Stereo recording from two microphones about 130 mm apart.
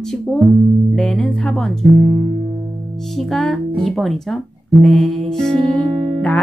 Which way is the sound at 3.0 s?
Centre (ahead or behind).